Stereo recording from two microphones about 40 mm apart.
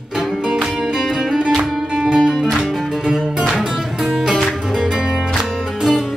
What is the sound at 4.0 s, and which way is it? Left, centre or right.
Music, centre.